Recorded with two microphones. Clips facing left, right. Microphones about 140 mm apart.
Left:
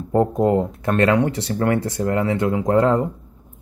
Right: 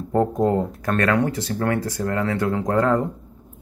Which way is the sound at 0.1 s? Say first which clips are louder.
Left 2 dB; 15° left (ahead or behind).